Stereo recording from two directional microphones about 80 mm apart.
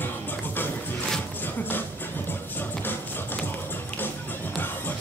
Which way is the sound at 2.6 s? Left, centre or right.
Left.